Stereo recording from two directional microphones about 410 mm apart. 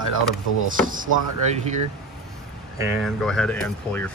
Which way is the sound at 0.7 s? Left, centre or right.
Centre.